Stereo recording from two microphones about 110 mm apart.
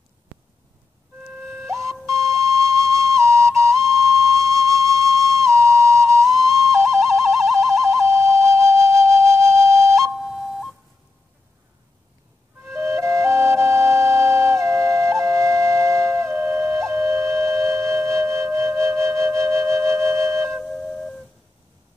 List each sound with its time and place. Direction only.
1.5 s music: 25° right (ahead or behind)
2.3 s whistle: 30° right (ahead or behind)
3.9 s flute: 30° right (ahead or behind)
6.3 s whistle: centre (ahead or behind)
6.6 s flute: 30° right (ahead or behind)
10.0 s flute: 5° right (ahead or behind)
12.6 s music: 25° right (ahead or behind)
15.0 s flute: 25° right (ahead or behind)
20.6 s wind instrument: centre (ahead or behind)